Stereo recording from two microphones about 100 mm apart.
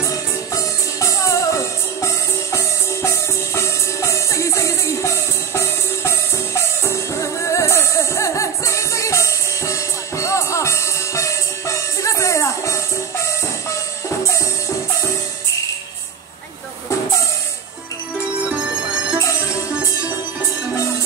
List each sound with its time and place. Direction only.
0.5 s music: 35° left (ahead or behind)
18.5 s music: 10° right (ahead or behind)